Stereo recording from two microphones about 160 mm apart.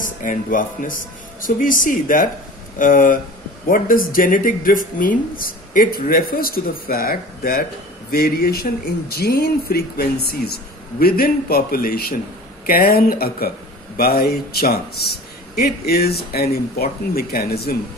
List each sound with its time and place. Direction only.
0.0 s a man's voice: 55° left (ahead or behind); by 17.7 s 75° left (ahead or behind)